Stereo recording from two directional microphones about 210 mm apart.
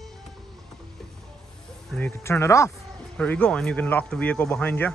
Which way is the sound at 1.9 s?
5° left (ahead or behind).